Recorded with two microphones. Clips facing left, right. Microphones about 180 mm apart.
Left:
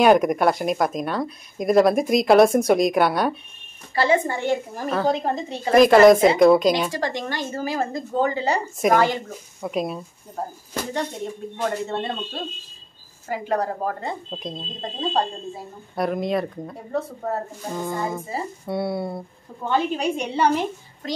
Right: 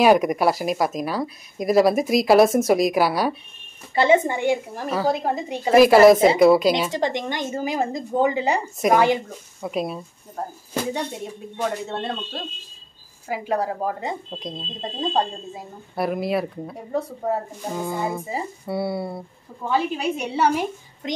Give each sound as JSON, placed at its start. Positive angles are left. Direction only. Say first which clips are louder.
{"t": 0.0, "sound": "speech", "louder": "even", "side_deg": 0}
{"t": 3.9, "sound": "a woman's voice", "louder": "right 3 dB", "side_deg": -20}
{"t": 4.7, "sound": "speech", "louder": "left 1 dB", "side_deg": -5}
{"t": 6.9, "sound": "speech", "louder": "right 2 dB", "side_deg": -20}
{"t": 9.6, "sound": "speech", "louder": "even", "side_deg": 0}
{"t": 10.7, "sound": "speech", "louder": "right 2 dB", "side_deg": -10}
{"t": 11.6, "sound": "speech", "louder": "left 1 dB", "side_deg": 0}
{"t": 16.0, "sound": "speech", "louder": "even", "side_deg": -5}
{"t": 21.0, "sound": "a child's voice", "louder": "right 1 dB", "side_deg": -20}